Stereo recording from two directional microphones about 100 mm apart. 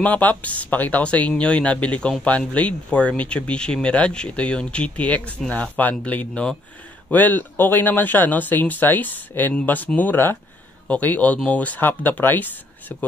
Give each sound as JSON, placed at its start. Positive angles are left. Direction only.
{"t": 0.0, "sound": "speech", "side_deg": 15}